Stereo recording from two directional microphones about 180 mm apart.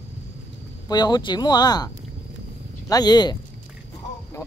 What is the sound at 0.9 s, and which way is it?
Speech, 20° left (ahead or behind).